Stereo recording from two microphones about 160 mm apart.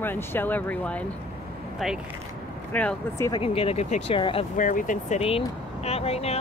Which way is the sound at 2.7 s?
10° left (ahead or behind).